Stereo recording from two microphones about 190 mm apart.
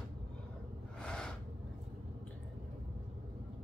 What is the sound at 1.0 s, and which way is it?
Gasp, 5° left (ahead or behind).